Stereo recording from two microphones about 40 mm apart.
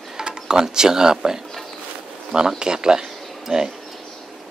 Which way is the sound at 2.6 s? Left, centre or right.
Right.